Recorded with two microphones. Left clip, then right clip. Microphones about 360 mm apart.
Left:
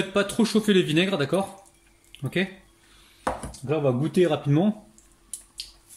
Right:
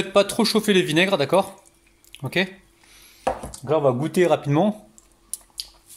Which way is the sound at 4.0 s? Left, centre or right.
Centre.